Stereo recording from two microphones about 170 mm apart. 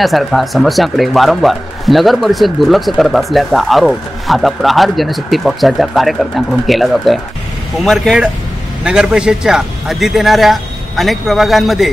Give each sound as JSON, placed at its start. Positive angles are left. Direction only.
{"t": 0.0, "sound": "speech", "side_deg": 0}